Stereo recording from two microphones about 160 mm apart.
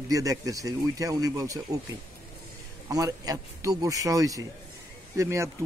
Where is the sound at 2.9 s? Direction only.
25° right (ahead or behind).